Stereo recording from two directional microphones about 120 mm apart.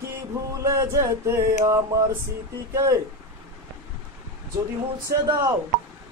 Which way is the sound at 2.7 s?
30° right (ahead or behind).